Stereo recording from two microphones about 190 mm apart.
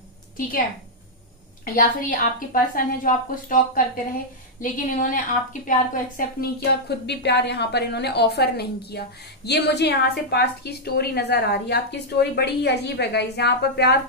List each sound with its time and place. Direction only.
1.6 s a woman's voice: 45° left (ahead or behind)